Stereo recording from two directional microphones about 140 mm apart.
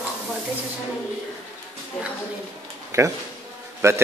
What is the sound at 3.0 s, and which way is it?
A man's voice, 20° right (ahead or behind).